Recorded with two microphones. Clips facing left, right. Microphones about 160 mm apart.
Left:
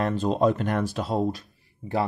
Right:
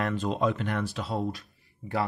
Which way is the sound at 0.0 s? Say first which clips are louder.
Left 5 dB; 40° left (ahead or behind).